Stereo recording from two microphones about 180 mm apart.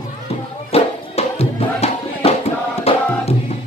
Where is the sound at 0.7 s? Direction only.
35° left (ahead or behind).